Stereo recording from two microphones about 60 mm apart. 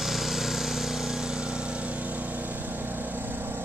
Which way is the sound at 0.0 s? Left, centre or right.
Centre.